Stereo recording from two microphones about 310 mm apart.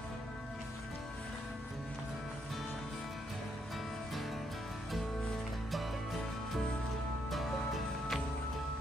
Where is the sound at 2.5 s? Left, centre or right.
Centre.